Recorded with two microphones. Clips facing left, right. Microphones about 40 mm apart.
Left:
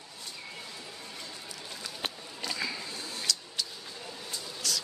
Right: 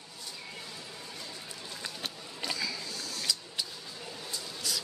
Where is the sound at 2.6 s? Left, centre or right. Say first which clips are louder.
Left 1 dB; left.